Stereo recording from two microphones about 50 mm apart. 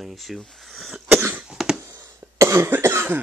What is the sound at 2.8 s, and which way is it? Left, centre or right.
Cough, right.